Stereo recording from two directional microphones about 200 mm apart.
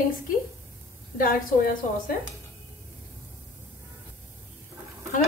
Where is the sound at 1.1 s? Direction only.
45° left (ahead or behind).